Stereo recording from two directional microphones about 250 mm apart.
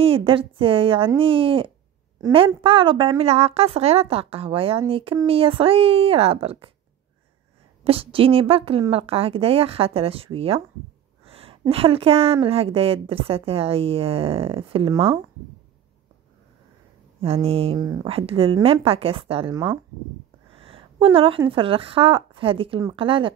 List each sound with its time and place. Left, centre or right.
0.0 s a woman's voice: right
7.8 s a woman's voice: right
17.2 s a woman's voice: right
20.5 s a sound: right
21.5 s a woman's voice: right